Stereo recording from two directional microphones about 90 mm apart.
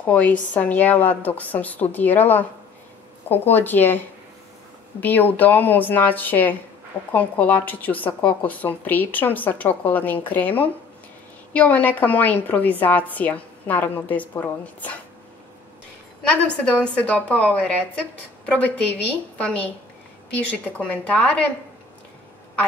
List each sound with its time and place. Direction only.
0.0 s a woman's voice: 15° left (ahead or behind)
5.0 s speech: 20° left (ahead or behind)
16.2 s a woman's voice: 15° left (ahead or behind)
20.3 s a woman's voice: 15° left (ahead or behind)